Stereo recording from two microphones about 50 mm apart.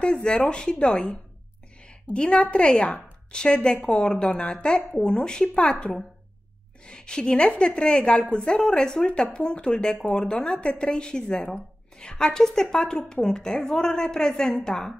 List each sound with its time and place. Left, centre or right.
0.0 s a woman's voice: centre
2.1 s a woman's voice: left